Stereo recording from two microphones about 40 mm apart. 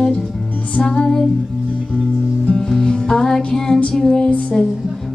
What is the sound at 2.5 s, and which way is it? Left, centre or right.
Music, centre.